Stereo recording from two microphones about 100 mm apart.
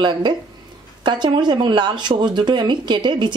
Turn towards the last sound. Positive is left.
turn(degrees=-50)  # may be behind; listen again after turning